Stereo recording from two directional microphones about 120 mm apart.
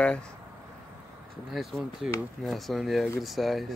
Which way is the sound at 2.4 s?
Centre (ahead or behind).